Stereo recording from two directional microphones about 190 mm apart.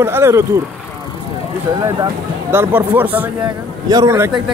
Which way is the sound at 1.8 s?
15° right (ahead or behind).